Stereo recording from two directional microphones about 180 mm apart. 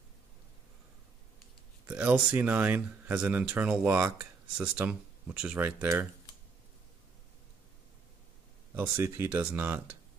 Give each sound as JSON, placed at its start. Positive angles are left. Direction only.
{"t": 1.9, "sound": "speech", "side_deg": -5}
{"t": 8.7, "sound": "speech", "side_deg": -10}